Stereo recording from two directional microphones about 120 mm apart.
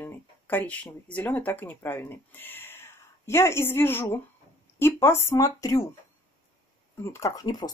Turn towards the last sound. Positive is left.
turn(degrees=35)  # may be behind; listen again after turning